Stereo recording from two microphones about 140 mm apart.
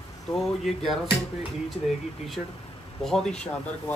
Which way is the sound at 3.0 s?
5° left (ahead or behind).